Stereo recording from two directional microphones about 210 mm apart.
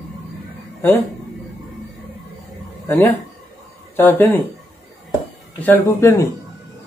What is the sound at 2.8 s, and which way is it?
Speech, 10° left (ahead or behind).